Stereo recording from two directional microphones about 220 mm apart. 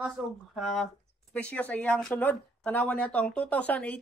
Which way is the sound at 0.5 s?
Centre (ahead or behind).